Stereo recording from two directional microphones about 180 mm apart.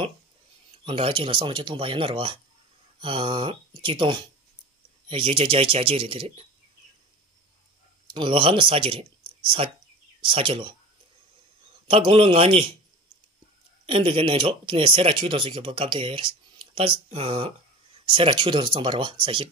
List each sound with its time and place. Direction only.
0.8 s speech: 30° right (ahead or behind)
8.1 s speech: 30° right (ahead or behind)
11.9 s speech: 30° right (ahead or behind)
13.8 s speech: 30° right (ahead or behind)